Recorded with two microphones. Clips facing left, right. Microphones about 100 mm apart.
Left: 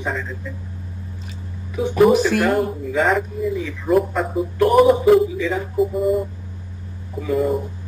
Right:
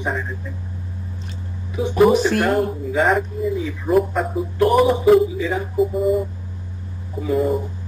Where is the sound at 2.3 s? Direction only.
Centre (ahead or behind).